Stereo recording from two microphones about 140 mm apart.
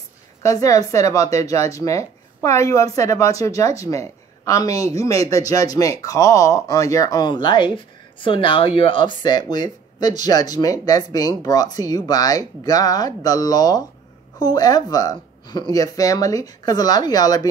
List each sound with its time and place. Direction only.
0.4 s speech: 25° left (ahead or behind)